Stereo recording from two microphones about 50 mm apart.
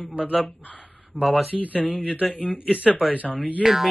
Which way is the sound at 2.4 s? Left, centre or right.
Left.